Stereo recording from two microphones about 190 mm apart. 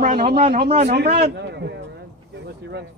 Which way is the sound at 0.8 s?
60° right (ahead or behind).